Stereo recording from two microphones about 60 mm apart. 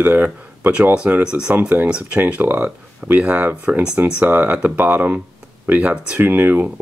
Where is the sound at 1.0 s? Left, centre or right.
Right.